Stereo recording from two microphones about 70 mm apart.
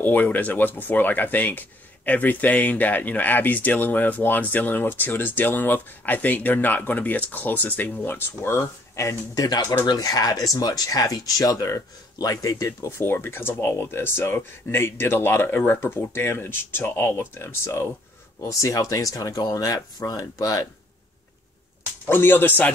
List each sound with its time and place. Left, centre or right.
0.0 s speech: left
8.5 s speech: left
9.4 s speech: left
18.4 s speech: left
22.1 s speech: left